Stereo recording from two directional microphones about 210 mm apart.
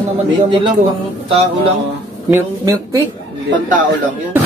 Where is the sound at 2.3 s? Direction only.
15° right (ahead or behind).